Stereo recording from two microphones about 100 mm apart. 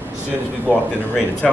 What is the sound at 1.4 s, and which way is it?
Speech, 5° left (ahead or behind).